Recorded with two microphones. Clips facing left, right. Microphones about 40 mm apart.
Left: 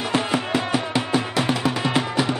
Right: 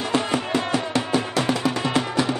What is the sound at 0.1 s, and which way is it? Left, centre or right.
Music, centre.